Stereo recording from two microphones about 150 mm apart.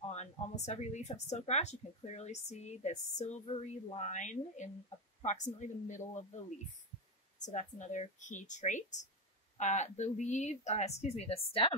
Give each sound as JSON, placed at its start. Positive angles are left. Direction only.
{"t": 0.1, "sound": "speech", "side_deg": 50}
{"t": 7.4, "sound": "speech", "side_deg": 55}